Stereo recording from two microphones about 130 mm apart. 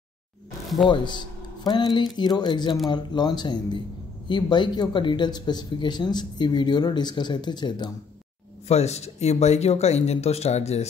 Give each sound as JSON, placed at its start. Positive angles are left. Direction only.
{"t": 0.8, "sound": "speech", "side_deg": 35}
{"t": 8.6, "sound": "speech", "side_deg": 55}